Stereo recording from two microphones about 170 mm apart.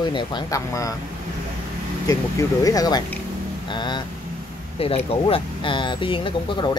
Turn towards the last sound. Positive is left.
turn(degrees=30)  # may be behind; listen again after turning